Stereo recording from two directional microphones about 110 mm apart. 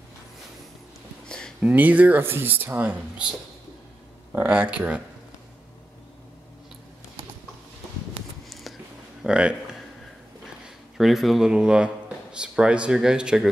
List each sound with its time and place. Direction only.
1.6 s speech: 15° right (ahead or behind)
4.3 s speech: 15° right (ahead or behind)
8.5 s a sound: centre (ahead or behind)
9.2 s speech: 10° right (ahead or behind)
11.0 s speech: centre (ahead or behind)